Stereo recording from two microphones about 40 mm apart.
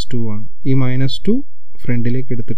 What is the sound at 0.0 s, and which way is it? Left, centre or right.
Speech, left.